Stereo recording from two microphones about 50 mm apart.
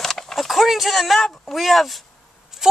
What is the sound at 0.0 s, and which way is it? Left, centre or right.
A child's voice, centre.